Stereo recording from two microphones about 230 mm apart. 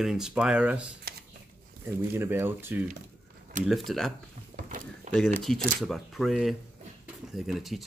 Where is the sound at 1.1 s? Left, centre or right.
Right.